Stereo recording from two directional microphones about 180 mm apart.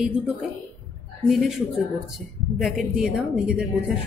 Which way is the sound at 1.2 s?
Centre (ahead or behind).